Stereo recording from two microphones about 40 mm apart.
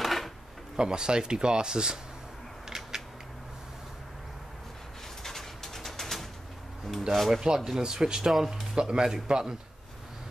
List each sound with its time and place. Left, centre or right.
0.0 s drawer open or close: centre
0.7 s speech: centre
5.2 s pigeon: centre
7.0 s speech: centre
7.4 s speech: centre